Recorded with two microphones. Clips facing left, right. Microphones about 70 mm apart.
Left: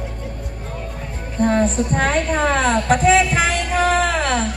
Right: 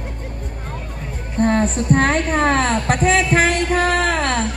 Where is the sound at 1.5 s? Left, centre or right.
Right.